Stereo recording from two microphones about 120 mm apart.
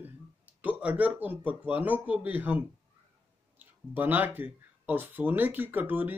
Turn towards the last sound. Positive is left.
turn(degrees=-15)  # may be behind; listen again after turning